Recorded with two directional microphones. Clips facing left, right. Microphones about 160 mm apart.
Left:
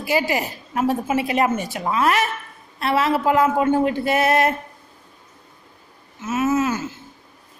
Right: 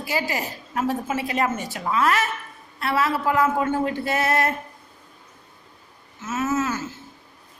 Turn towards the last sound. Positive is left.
turn(degrees=15)  # may be behind; listen again after turning